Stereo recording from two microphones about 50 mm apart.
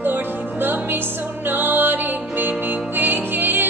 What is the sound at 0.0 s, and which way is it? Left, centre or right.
Music, right.